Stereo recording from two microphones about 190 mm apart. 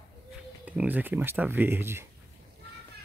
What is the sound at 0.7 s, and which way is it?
Speech, 10° right (ahead or behind).